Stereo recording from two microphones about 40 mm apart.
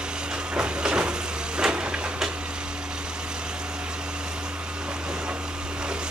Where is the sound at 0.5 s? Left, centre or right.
Right.